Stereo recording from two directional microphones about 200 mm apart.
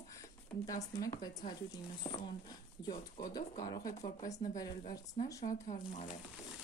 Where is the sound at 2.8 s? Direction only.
20° left (ahead or behind).